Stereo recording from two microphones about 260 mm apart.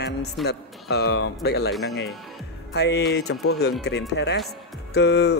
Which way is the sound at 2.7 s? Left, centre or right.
Left.